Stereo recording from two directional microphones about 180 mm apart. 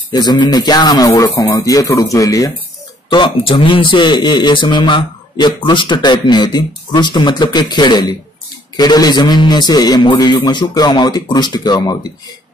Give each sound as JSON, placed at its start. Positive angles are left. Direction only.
{"t": 0.1, "sound": "a man's voice", "side_deg": 25}